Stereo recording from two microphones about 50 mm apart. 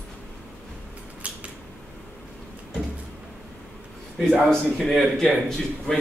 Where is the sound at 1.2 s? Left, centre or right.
Right.